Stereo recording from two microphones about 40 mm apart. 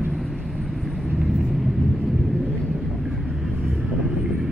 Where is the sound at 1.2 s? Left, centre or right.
Centre.